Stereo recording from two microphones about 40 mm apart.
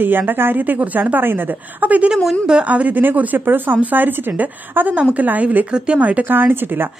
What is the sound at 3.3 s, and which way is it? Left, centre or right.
Speech, right.